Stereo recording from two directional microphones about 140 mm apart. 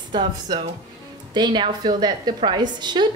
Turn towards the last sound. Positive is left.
turn(degrees=-30)  # may be behind; listen again after turning